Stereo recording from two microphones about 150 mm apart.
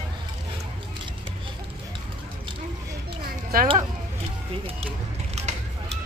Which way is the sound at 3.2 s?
75° right (ahead or behind).